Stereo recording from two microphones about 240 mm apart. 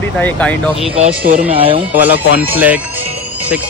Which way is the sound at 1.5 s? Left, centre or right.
Right.